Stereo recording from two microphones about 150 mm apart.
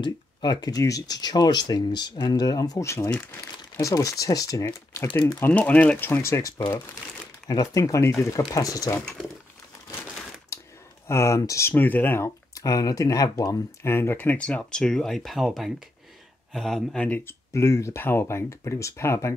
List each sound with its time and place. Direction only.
0.0 s speech: 30° left (ahead or behind)
10.5 s a sound: 20° left (ahead or behind)
11.1 s speech: 20° left (ahead or behind)